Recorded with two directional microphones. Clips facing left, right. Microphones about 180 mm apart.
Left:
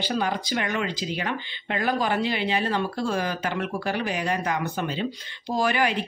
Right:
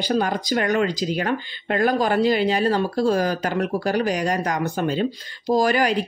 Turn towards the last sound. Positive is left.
turn(degrees=-40)  # may be behind; listen again after turning